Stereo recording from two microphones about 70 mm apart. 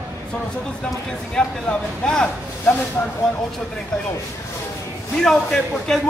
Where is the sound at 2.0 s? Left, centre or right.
Centre.